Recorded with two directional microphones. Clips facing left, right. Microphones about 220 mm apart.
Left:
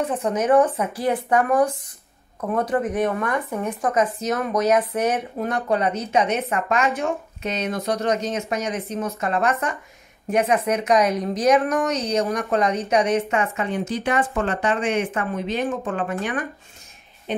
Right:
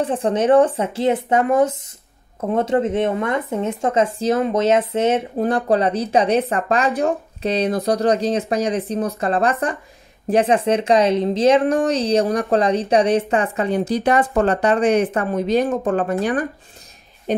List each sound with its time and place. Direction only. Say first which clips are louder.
0.0 s speech: right 4 dB; 30° right (ahead or behind)